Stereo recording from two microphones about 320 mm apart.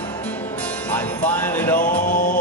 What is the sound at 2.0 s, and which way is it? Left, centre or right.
Mantra, left.